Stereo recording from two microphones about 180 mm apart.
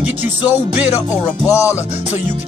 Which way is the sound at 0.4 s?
10° right (ahead or behind).